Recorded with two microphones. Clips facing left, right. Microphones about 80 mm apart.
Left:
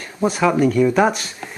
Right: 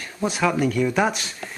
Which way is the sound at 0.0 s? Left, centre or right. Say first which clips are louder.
Left 5 dB; centre.